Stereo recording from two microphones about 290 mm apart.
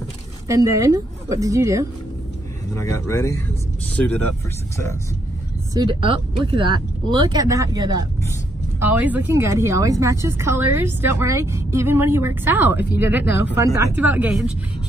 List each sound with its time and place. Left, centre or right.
0.5 s a woman's voice: centre
2.7 s speech: centre
5.8 s a woman's voice: centre